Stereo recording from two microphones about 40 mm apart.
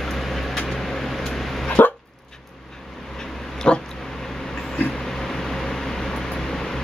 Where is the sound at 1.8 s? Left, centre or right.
Left.